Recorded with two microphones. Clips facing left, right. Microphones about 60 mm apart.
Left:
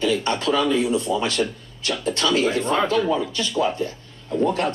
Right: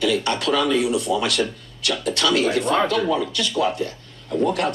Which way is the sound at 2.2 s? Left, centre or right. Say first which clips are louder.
Right 1 dB; left.